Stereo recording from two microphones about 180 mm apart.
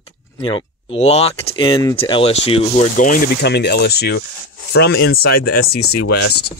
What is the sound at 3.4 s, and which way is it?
Speech, 65° left (ahead or behind).